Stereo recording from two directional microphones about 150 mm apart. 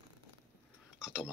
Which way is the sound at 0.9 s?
5° right (ahead or behind).